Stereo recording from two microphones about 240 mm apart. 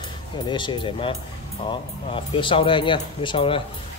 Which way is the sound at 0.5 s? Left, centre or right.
Centre.